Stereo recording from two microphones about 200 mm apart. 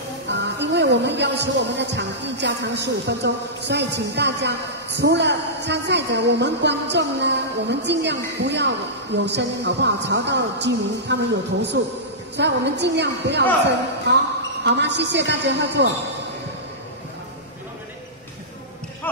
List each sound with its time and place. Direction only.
0.3 s speech: 60° right (ahead or behind)
14.6 s speech: 60° right (ahead or behind)